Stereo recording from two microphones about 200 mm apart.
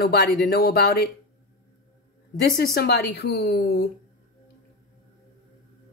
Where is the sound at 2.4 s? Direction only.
55° left (ahead or behind).